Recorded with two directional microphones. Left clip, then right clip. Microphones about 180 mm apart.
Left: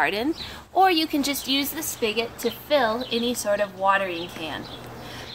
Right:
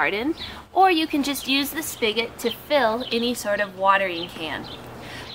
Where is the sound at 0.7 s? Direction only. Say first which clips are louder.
Right 1 dB; 15° left (ahead or behind).